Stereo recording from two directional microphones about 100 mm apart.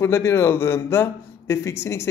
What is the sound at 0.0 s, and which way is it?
A man's voice, 25° left (ahead or behind).